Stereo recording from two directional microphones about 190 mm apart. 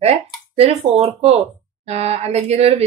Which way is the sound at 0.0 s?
35° right (ahead or behind).